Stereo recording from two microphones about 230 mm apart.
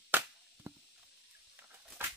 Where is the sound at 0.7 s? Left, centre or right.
Centre.